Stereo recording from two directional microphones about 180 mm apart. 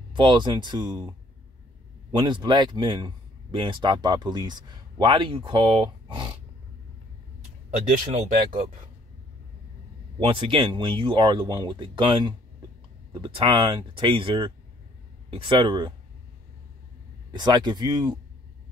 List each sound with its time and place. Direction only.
0.1 s speech: 25° right (ahead or behind)
2.1 s speech: 25° right (ahead or behind)
7.9 s speech: 45° right (ahead or behind)
10.2 s speech: 30° right (ahead or behind)
17.3 s speech: 25° right (ahead or behind)